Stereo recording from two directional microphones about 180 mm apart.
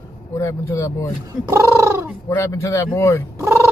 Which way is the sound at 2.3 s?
15° left (ahead or behind).